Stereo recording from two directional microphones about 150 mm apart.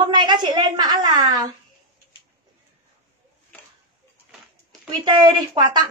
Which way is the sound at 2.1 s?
35° left (ahead or behind).